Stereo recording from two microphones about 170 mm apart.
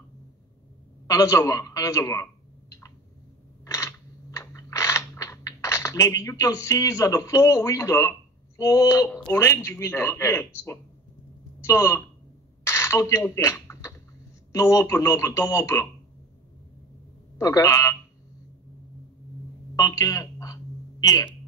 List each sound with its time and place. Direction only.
1.0 s a woman's voice: 20° left (ahead or behind)
3.6 s mechanisms: 20° left (ahead or behind)
9.2 s speech: 15° left (ahead or behind)
11.6 s speech: 15° left (ahead or behind)
12.6 s a sound: 15° left (ahead or behind)
14.5 s speech: 20° left (ahead or behind)
17.4 s a woman's voice: 20° left (ahead or behind)
19.7 s telephone: 20° left (ahead or behind)